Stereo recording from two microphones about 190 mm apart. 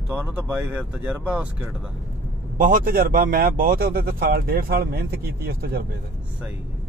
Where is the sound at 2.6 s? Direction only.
45° right (ahead or behind).